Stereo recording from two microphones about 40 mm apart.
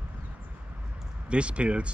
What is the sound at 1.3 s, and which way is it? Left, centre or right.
Speech, right.